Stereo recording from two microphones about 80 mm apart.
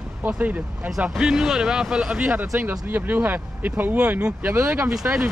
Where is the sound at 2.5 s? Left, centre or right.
Right.